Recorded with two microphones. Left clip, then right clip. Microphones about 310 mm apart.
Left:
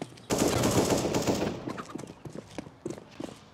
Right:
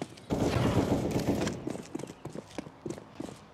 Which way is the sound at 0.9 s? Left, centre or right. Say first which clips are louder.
Left 3 dB; left.